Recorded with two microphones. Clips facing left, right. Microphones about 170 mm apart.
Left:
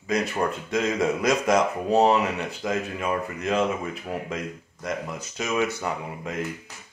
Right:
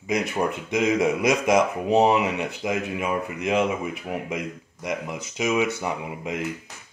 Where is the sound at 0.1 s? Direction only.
15° right (ahead or behind).